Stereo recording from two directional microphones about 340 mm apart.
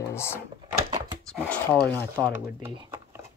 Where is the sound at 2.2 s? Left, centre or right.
Centre.